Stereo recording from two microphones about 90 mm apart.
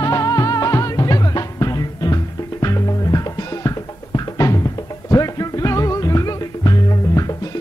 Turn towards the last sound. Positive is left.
turn(degrees=45)  # may be behind; listen again after turning